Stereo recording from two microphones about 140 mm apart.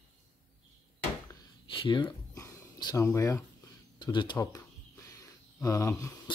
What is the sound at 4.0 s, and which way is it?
Speech, 35° left (ahead or behind).